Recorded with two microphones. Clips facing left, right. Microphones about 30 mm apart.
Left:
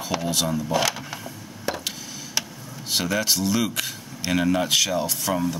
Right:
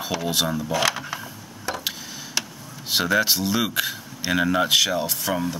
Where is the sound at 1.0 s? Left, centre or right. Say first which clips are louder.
Right 2 dB; centre.